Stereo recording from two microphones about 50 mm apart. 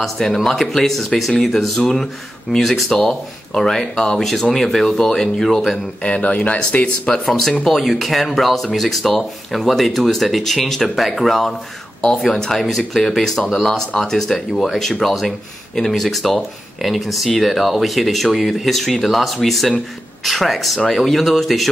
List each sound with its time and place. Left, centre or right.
0.0 s speech: centre
6.0 s speech: left
7.2 s speech: centre
13.4 s speech: centre
13.7 s speech: centre